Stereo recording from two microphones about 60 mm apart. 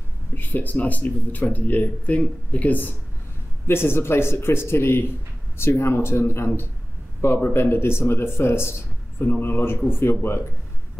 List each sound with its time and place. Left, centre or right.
0.3 s speech: left
3.6 s speech: left